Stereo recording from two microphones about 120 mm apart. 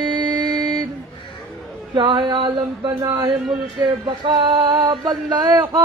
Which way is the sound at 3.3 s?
5° right (ahead or behind).